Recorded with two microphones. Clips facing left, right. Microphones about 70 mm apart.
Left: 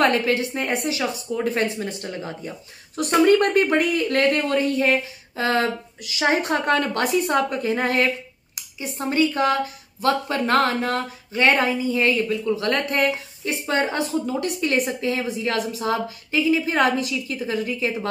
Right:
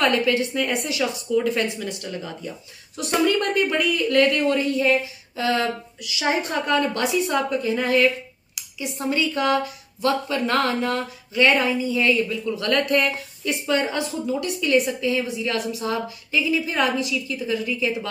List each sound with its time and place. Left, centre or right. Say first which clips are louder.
0.0 s a woman's voice: left 1 dB; left
8.5 s a woman's voice: even; left
12.4 s speech: even; left
13.5 s a woman's voice: even; left